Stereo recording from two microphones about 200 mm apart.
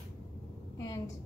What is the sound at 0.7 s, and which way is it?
Speech, 15° left (ahead or behind).